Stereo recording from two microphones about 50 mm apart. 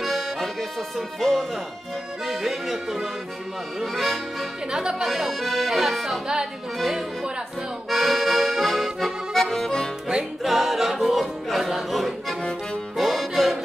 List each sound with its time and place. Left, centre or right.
0.0 s accordion: centre
2.2 s music: centre
3.8 s speech: centre
4.6 s music: centre
5.0 s speech: centre
7.9 s accordion: centre
10.0 s music: centre